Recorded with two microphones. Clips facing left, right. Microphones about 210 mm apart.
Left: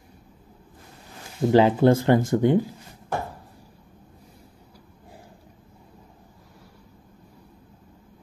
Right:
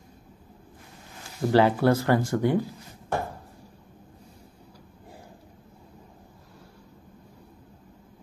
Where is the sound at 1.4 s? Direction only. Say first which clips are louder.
Left 3 dB; 20° left (ahead or behind).